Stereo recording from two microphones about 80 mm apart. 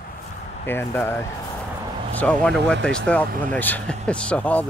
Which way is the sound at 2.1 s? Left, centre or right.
Centre.